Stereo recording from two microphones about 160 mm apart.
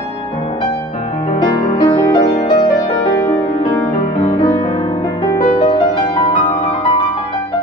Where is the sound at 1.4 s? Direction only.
30° left (ahead or behind).